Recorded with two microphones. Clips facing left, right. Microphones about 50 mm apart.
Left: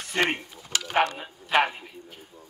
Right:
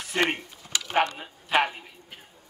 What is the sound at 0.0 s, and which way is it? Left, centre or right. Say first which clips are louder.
Speech: even; centre.